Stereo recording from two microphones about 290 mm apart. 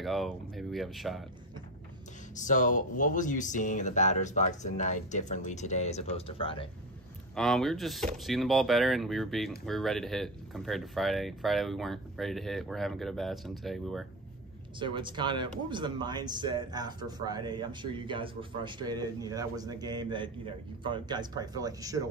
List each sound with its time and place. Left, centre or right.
0.0 s speech: centre
2.4 s speech: left
7.3 s speech: centre
14.8 s speech: centre